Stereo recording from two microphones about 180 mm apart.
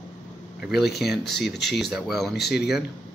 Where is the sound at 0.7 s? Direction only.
65° left (ahead or behind).